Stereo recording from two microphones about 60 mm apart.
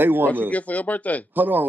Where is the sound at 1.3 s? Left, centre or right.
Right.